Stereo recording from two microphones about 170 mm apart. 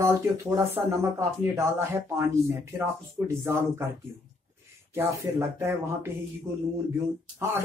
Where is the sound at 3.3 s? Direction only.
15° right (ahead or behind).